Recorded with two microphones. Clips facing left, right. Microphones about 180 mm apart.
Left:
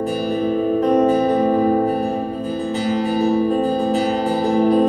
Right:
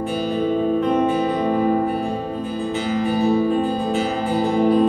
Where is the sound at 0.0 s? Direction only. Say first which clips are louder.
Left 1 dB; 40° left (ahead or behind).